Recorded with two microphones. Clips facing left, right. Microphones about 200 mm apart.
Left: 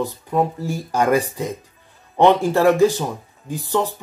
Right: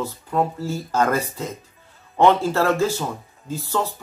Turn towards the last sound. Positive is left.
turn(degrees=15)  # may be behind; listen again after turning